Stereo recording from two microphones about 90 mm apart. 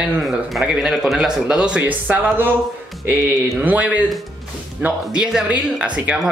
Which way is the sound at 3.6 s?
20° right (ahead or behind).